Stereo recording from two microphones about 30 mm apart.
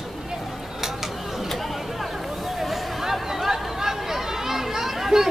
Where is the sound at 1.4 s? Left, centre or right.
Centre.